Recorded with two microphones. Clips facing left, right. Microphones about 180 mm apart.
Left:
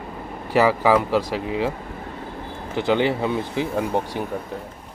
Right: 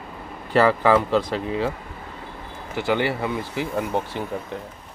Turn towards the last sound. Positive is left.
turn(degrees=15)  # may be behind; listen again after turning